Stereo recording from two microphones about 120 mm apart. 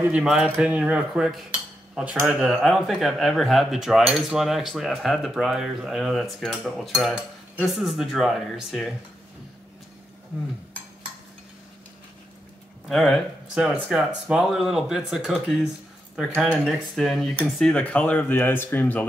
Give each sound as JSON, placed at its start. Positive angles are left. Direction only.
{"t": 0.0, "sound": "speech", "side_deg": -5}
{"t": 12.8, "sound": "speech", "side_deg": 0}
{"t": 16.6, "sound": "speech", "side_deg": 0}